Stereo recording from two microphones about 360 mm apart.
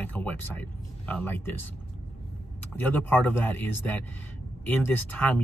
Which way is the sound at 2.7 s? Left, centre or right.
Centre.